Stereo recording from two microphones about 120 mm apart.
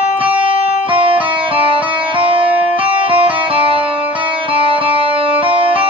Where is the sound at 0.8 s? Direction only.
45° right (ahead or behind).